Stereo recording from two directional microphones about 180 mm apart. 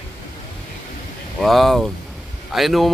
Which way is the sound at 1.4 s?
Centre (ahead or behind).